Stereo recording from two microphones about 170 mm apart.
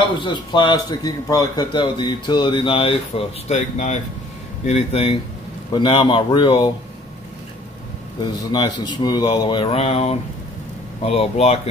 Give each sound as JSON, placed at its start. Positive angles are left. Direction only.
{"t": 0.2, "sound": "a man's voice", "side_deg": 25}
{"t": 4.6, "sound": "a man's voice", "side_deg": 35}
{"t": 8.2, "sound": "a man's voice", "side_deg": 25}